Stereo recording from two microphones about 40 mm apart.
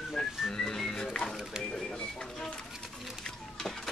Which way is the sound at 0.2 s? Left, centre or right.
Centre.